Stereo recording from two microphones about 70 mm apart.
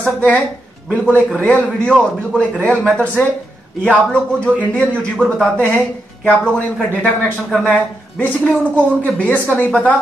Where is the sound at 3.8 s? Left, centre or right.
Centre.